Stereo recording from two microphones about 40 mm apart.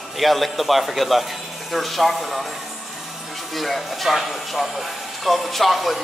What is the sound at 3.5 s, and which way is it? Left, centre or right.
Speech, centre.